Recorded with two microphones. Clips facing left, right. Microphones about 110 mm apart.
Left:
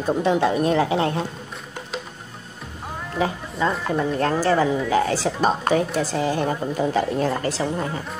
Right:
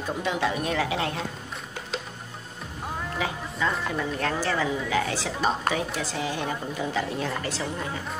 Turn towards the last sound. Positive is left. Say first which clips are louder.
# left 6 dB
turn(degrees=35)  # may be behind; listen again after turning